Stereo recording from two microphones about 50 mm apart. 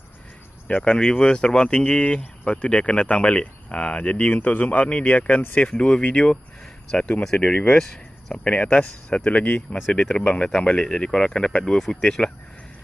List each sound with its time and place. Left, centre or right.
0.8 s speech: left
5.7 s speech: centre
7.3 s speech: left
8.5 s speech: left
9.9 s speech: centre